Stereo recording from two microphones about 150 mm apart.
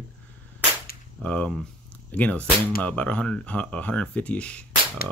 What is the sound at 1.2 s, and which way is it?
Speech, 5° left (ahead or behind).